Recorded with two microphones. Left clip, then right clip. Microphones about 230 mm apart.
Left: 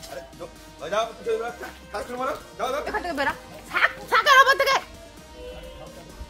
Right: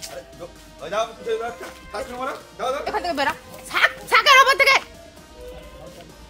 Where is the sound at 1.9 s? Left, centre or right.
Centre.